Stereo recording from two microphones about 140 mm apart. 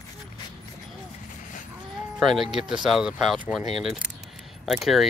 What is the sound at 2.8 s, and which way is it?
Speech, 5° right (ahead or behind).